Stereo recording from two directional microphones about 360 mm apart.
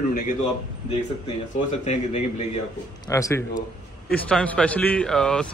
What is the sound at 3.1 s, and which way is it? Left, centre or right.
Speech, centre.